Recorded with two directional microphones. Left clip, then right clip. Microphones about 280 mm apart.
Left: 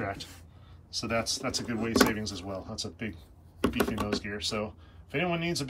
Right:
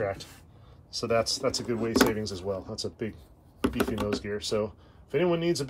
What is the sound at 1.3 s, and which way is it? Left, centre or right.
Speech, centre.